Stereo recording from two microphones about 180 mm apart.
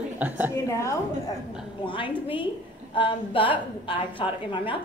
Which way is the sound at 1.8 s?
25° left (ahead or behind).